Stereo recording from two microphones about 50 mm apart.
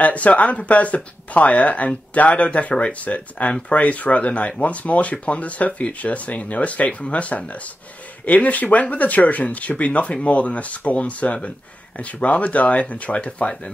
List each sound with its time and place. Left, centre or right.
0.0 s speech: left